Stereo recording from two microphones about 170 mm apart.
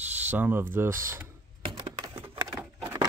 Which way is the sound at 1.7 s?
30° right (ahead or behind).